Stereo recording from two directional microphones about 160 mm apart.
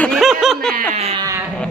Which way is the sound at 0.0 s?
Centre (ahead or behind).